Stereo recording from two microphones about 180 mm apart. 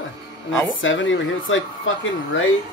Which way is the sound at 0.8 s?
90° left.